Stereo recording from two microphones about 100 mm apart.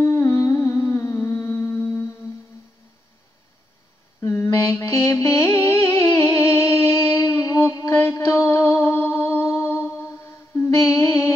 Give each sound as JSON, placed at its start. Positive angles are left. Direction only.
{"t": 0.0, "sound": "humming", "side_deg": 30}
{"t": 4.2, "sound": "mantra", "side_deg": 30}
{"t": 5.2, "sound": "music", "side_deg": 25}